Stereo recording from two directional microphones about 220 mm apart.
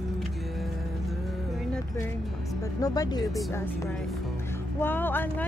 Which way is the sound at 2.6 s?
15° left (ahead or behind).